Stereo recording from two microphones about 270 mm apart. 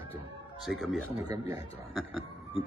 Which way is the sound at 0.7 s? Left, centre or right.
Centre.